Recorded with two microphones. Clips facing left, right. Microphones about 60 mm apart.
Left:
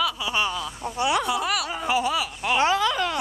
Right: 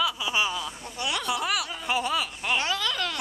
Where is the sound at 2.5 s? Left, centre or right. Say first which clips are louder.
Left 7 dB; left.